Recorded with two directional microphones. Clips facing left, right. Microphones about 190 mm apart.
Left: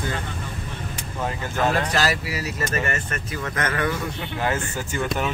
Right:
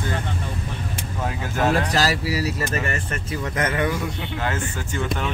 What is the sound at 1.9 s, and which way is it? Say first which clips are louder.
Speech: right 2 dB; 35° right (ahead or behind).